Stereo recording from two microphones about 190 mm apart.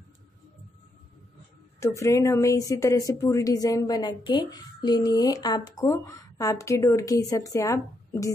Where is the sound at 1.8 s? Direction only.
15° left (ahead or behind).